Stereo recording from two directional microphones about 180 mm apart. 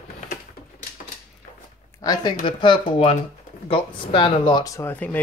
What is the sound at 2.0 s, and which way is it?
A child's voice, 20° left (ahead or behind).